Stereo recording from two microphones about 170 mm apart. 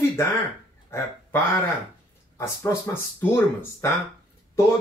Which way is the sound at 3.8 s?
15° left (ahead or behind).